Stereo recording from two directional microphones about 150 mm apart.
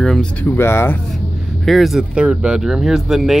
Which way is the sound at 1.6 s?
Centre (ahead or behind).